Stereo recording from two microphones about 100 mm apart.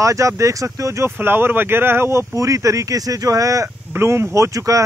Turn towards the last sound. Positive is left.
turn(degrees=-35)  # may be behind; listen again after turning